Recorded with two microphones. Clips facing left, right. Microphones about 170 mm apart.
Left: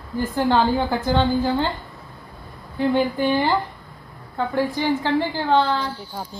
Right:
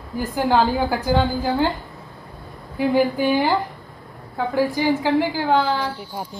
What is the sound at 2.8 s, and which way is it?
A woman's voice, 5° right (ahead or behind).